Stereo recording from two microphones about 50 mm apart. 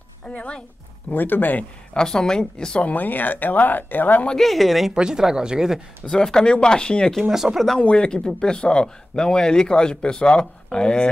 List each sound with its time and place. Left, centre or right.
0.3 s a woman's voice: left
1.1 s speech: left
2.0 s speech: centre
2.8 s speech: left
4.4 s speech: centre
4.9 s speech: centre
6.0 s speech: centre
7.2 s speech: centre
7.8 s speech: left